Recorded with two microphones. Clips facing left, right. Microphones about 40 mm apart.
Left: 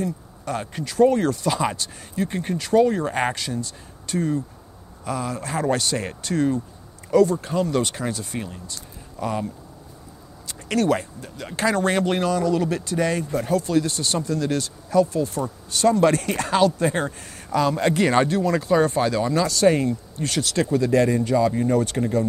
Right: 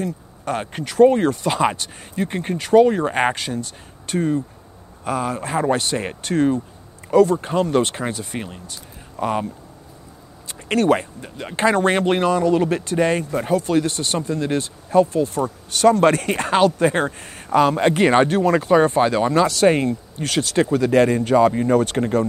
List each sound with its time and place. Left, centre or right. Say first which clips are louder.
0.0 s speech: right 2 dB; right
10.7 s speech: right 4 dB; right